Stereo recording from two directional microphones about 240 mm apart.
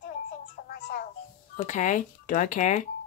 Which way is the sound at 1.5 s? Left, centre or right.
Left.